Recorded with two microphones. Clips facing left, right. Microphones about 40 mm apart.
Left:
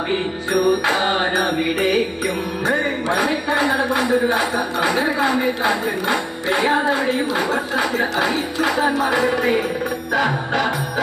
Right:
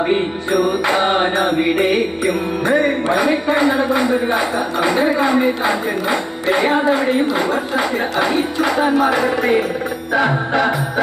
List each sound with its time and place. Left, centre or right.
0.1 s music: centre
6.0 s speech: centre
10.1 s music: centre